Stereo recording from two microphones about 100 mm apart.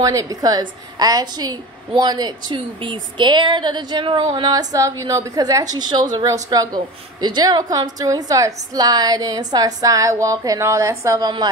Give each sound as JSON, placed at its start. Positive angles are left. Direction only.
{"t": 0.0, "sound": "a woman's voice", "side_deg": -35}
{"t": 4.5, "sound": "a woman's voice", "side_deg": -40}
{"t": 11.1, "sound": "a woman's voice", "side_deg": -45}